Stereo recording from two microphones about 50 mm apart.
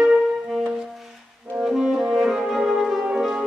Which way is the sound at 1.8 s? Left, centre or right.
Centre.